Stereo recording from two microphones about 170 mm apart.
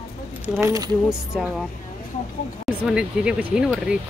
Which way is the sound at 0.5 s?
20° right (ahead or behind).